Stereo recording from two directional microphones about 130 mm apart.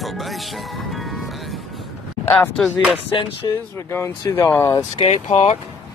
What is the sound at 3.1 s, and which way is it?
Speech, 45° left (ahead or behind).